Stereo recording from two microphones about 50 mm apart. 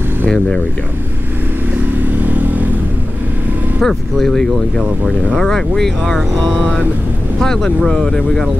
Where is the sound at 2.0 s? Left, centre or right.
Right.